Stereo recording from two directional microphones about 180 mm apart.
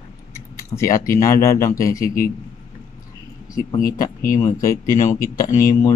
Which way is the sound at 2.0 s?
55° left (ahead or behind).